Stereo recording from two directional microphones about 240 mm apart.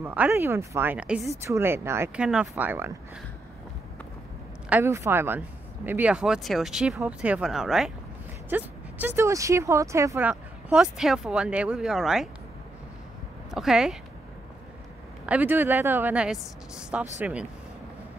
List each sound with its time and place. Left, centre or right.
0.0 s speech: centre
4.6 s speech: centre
13.5 s speech: centre
15.2 s speech: centre